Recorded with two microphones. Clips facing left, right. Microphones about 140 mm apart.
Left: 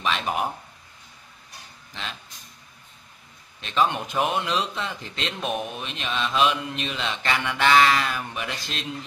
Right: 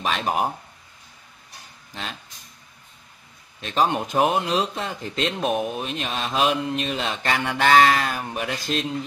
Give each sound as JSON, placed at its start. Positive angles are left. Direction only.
{"t": 0.0, "sound": "speech", "side_deg": -45}
{"t": 3.6, "sound": "speech", "side_deg": -40}
{"t": 5.7, "sound": "mantra", "side_deg": -40}